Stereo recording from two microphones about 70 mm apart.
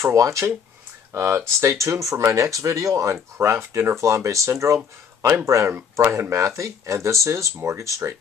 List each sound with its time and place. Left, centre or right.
0.0 s speech: right